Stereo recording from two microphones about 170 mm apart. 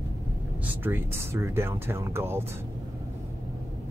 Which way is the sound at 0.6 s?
10° right (ahead or behind).